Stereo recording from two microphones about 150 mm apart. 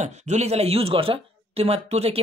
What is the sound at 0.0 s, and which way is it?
Speech, 50° right (ahead or behind).